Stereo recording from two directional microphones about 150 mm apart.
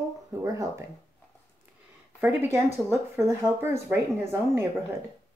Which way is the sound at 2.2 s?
15° right (ahead or behind).